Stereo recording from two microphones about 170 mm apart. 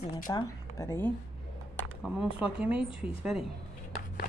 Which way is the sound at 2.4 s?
5° right (ahead or behind).